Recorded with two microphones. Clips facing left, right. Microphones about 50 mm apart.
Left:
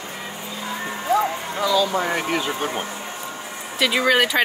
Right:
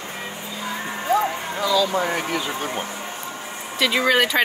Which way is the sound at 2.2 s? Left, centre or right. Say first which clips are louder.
Left 2 dB; left.